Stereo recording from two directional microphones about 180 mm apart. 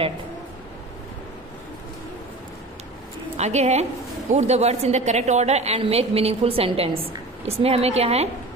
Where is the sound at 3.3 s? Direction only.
40° right (ahead or behind).